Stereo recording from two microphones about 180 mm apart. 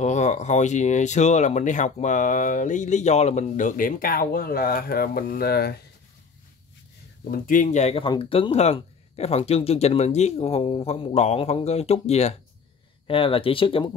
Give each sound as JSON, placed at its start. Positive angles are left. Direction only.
{"t": 0.0, "sound": "speech", "side_deg": 40}
{"t": 7.2, "sound": "speech", "side_deg": 50}